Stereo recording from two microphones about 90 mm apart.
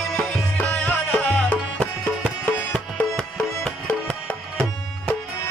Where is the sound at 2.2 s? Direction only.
5° right (ahead or behind).